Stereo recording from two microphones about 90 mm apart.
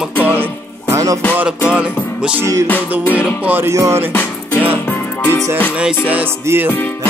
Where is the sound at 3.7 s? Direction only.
35° right (ahead or behind).